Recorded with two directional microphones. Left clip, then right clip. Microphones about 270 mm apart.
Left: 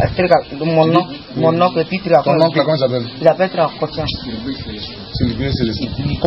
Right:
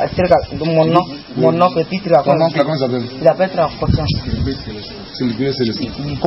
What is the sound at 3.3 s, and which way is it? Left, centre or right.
Speech, centre.